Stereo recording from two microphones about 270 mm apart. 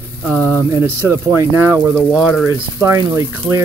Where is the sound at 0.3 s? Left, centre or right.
Centre.